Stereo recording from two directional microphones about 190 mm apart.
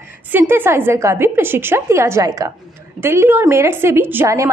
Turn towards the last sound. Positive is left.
turn(degrees=-15)  # may be behind; listen again after turning